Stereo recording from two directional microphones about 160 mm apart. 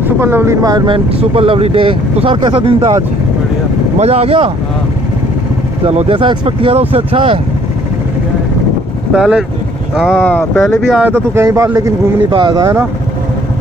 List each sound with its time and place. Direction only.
0.2 s speech: 15° right (ahead or behind); by 3.0 s 30° right (ahead or behind)
4.0 s speech: 40° right (ahead or behind)
5.9 s speech: 35° right (ahead or behind)
9.1 s speech: 5° right (ahead or behind)
10.2 s speech: 15° left (ahead or behind)
10.6 s speech: centre (ahead or behind); by 12.8 s 20° right (ahead or behind)